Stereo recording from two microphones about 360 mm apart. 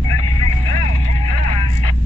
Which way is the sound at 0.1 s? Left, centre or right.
Left.